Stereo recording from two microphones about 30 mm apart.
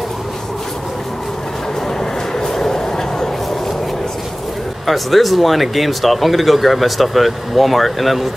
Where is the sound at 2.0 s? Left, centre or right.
Left.